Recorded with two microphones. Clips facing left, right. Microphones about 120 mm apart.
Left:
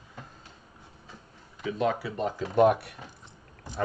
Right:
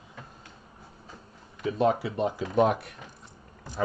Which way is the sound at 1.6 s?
30° right (ahead or behind).